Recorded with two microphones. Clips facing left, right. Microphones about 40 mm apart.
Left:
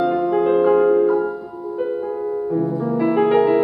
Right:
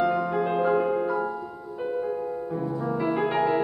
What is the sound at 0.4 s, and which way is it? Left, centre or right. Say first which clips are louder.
Music: left 10 dB; centre.